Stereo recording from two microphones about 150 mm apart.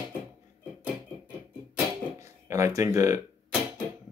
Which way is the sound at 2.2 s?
20° right (ahead or behind).